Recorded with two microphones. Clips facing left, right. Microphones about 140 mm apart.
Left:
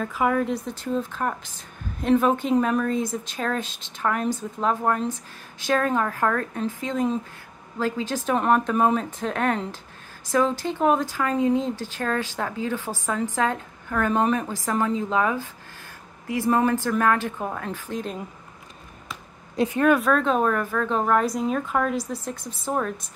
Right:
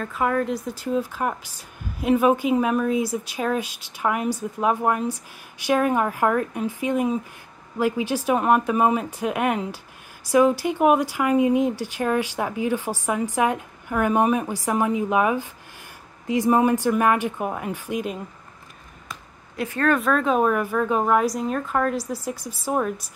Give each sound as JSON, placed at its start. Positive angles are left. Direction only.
{"t": 0.0, "sound": "a woman's voice", "side_deg": 5}
{"t": 19.5, "sound": "speech", "side_deg": 25}
{"t": 20.0, "sound": "a woman's voice", "side_deg": 0}